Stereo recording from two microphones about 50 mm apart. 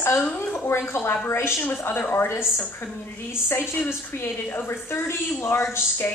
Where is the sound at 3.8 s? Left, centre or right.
Left.